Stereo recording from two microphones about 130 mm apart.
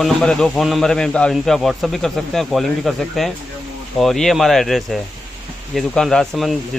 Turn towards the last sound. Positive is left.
turn(degrees=0)  # may be behind; listen again after turning